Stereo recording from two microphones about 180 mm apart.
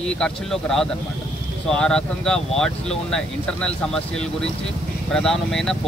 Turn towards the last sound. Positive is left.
turn(degrees=0)  # may be behind; listen again after turning